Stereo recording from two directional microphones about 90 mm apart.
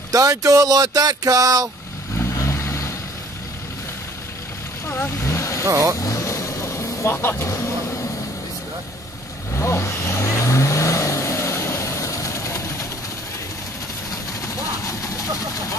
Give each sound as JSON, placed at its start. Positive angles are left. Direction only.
{"t": 0.1, "sound": "speech", "side_deg": -40}
{"t": 2.1, "sound": "vehicle", "side_deg": 35}
{"t": 4.8, "sound": "vehicle", "side_deg": 25}
{"t": 5.7, "sound": "speech", "side_deg": -40}
{"t": 5.9, "sound": "vehicle", "side_deg": 35}
{"t": 9.6, "sound": "vehicle", "side_deg": 30}
{"t": 14.4, "sound": "a sound", "side_deg": 35}